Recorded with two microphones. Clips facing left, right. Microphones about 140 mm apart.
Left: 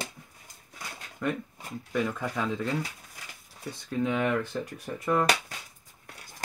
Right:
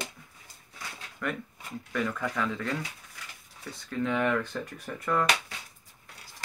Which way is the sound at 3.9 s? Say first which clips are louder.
Even; 15° left (ahead or behind).